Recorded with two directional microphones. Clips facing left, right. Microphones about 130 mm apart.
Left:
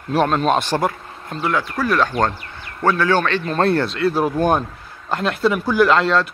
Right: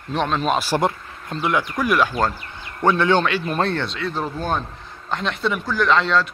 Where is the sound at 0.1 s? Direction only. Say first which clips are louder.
Left 4 dB; 5° left (ahead or behind).